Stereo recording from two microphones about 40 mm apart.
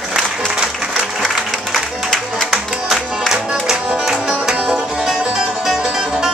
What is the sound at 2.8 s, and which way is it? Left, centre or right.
Music, centre.